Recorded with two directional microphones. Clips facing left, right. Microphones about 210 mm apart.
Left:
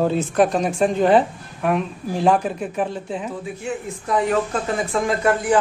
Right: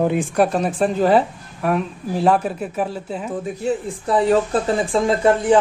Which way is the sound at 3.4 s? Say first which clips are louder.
Right 5 dB; 35° right (ahead or behind).